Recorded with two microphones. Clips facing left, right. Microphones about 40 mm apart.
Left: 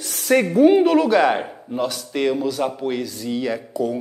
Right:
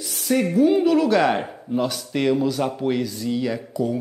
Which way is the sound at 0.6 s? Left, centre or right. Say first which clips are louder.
Left 3 dB; left.